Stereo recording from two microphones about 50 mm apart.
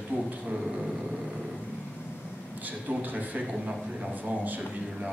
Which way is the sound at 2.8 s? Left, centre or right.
Right.